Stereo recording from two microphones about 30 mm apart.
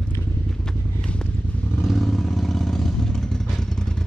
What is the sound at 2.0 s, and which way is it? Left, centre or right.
Vehicle, centre.